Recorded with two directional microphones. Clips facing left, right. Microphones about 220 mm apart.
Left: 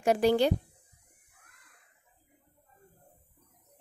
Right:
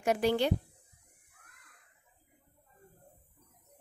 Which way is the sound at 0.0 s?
35° left (ahead or behind).